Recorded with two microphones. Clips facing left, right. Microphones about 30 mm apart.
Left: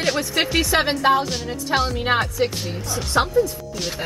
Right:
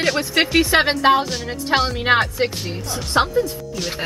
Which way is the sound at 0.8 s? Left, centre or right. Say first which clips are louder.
Right 1 dB; centre.